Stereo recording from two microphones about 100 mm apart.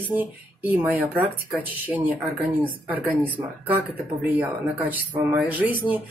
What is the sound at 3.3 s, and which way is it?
Speech, 15° right (ahead or behind).